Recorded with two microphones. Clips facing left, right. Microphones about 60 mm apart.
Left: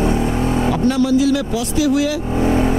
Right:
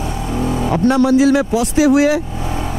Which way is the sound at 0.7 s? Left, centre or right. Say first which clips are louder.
Right 5 dB; right.